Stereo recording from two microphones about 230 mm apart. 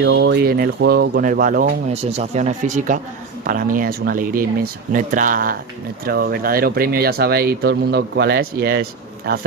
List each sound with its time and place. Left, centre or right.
0.0 s speech: right